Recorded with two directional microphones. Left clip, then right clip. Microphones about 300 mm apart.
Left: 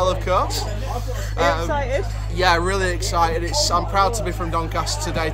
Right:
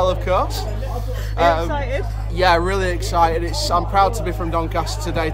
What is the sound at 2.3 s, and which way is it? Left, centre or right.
Speech, centre.